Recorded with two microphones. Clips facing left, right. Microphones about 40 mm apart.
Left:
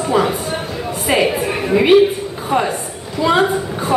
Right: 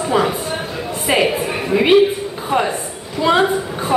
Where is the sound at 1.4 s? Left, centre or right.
Centre.